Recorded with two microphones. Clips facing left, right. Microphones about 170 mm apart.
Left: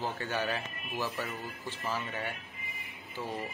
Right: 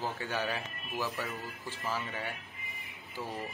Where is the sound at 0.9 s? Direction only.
15° left (ahead or behind).